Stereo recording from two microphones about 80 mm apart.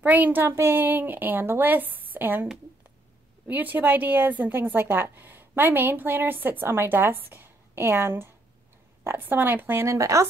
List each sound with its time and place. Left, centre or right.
0.0 s a woman's voice: right
3.4 s a woman's voice: right
9.8 s speech: right